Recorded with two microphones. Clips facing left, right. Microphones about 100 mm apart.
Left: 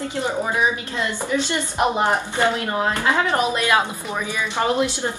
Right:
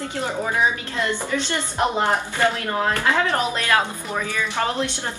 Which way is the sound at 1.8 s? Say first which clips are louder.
Left 1 dB; 20° left (ahead or behind).